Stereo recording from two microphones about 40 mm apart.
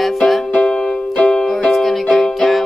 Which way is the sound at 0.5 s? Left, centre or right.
Centre.